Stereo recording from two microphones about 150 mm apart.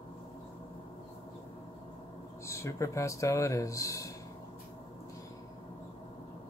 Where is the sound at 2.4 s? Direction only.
20° left (ahead or behind).